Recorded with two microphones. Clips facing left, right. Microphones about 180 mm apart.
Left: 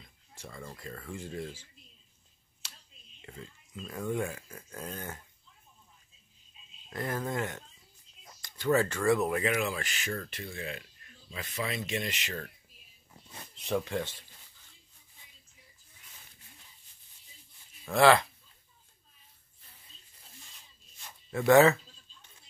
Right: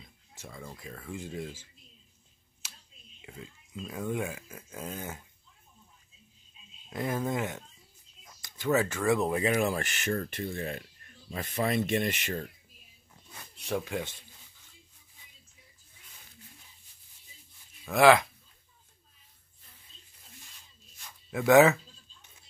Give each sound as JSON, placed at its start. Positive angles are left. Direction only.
{"t": 0.5, "sound": "speech", "side_deg": -5}
{"t": 3.2, "sound": "speech", "side_deg": -5}
{"t": 6.9, "sound": "speech", "side_deg": -15}
{"t": 9.0, "sound": "speech", "side_deg": -20}
{"t": 9.6, "sound": "speech", "side_deg": -55}
{"t": 13.6, "sound": "speech", "side_deg": 0}
{"t": 17.9, "sound": "speech", "side_deg": -15}
{"t": 21.5, "sound": "speech", "side_deg": -15}